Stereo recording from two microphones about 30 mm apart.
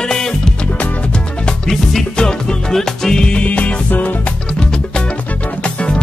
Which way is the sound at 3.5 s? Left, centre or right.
Left.